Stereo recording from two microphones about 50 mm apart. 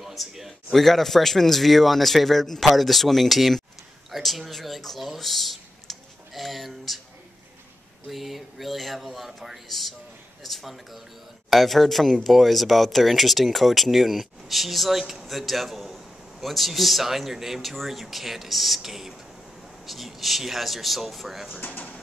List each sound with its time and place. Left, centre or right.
0.0 s speech: centre
8.1 s speech: centre
21.5 s speech: left